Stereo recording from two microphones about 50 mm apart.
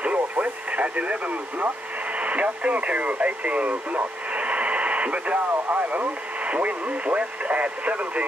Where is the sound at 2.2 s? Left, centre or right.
Right.